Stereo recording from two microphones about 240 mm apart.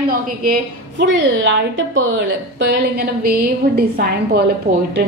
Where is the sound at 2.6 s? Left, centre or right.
Right.